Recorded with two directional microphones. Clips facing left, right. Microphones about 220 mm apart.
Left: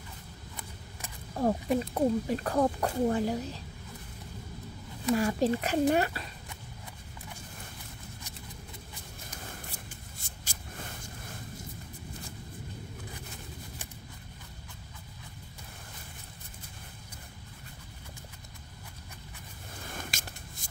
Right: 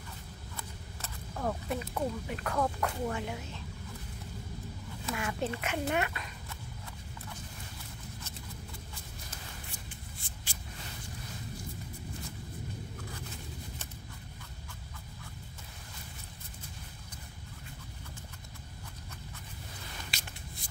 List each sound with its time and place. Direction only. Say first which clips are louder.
1.3 s speech: left 7 dB; 30° left (ahead or behind)
5.1 s speech: left 9 dB; 35° left (ahead or behind)
10.2 s vehicle: left 1 dB; 45° left (ahead or behind)
19.9 s squish: left 7 dB; 50° left (ahead or behind)